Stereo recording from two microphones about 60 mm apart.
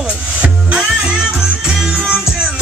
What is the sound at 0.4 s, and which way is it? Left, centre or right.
Music, centre.